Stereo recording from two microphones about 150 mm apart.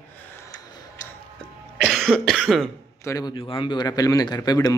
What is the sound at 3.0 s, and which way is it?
A man's voice, 25° left (ahead or behind).